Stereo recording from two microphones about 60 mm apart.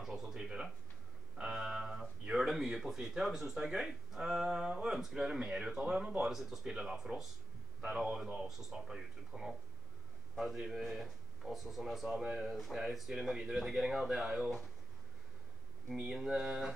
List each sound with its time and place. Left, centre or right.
0.0 s a man's voice: centre
15.9 s speech: centre